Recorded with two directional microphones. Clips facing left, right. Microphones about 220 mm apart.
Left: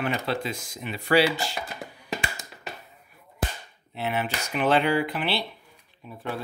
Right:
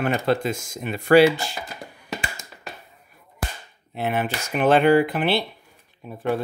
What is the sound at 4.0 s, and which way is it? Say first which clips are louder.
Speech: right 4 dB; 50° right (ahead or behind).